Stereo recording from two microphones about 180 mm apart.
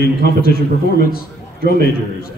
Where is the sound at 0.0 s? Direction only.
55° left (ahead or behind).